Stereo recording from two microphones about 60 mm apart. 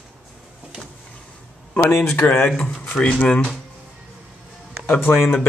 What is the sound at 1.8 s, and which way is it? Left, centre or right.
Speech, left.